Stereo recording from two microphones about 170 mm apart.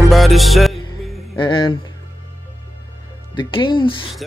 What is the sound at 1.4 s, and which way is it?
Speech, 30° left (ahead or behind).